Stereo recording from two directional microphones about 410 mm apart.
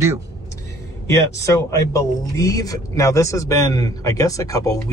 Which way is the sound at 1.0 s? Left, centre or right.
Centre.